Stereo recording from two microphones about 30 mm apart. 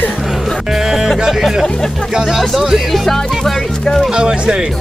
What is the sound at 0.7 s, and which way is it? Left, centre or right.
Speech, centre.